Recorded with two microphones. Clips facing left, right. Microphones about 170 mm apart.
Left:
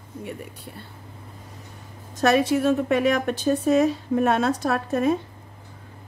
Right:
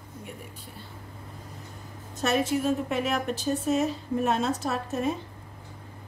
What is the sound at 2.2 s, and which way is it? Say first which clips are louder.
A woman's voice: left 6 dB; 70° left (ahead or behind).